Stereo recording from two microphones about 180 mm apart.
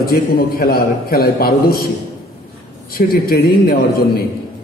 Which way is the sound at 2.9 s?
55° left (ahead or behind).